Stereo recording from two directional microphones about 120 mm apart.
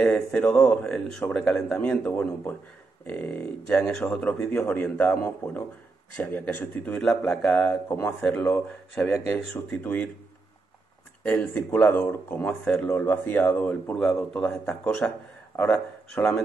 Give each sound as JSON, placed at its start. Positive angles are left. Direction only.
{"t": 0.0, "sound": "speech", "side_deg": 5}
{"t": 11.2, "sound": "speech", "side_deg": 15}
{"t": 12.6, "sound": "speech", "side_deg": 5}